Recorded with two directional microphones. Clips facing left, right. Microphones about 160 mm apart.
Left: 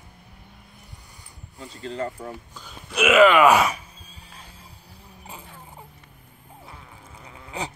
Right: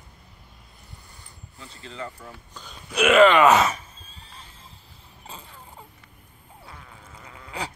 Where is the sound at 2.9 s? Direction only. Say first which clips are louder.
Even; 5° left (ahead or behind); by 7.7 s 20° left (ahead or behind).